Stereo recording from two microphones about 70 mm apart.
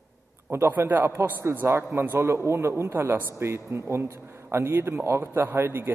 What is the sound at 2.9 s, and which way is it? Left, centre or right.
Speech, right.